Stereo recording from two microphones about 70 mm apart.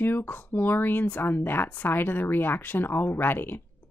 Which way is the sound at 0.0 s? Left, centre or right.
Left.